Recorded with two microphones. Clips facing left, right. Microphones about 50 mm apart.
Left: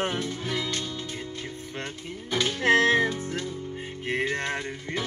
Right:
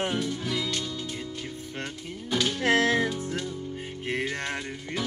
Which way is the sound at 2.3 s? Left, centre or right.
Left.